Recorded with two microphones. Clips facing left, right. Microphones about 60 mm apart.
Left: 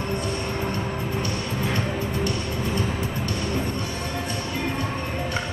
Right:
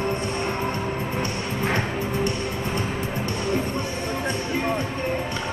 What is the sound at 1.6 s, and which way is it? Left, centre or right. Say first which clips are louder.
Music: right 3 dB; right.